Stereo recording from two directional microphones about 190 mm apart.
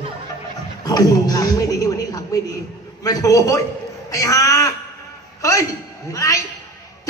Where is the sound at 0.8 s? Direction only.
20° left (ahead or behind).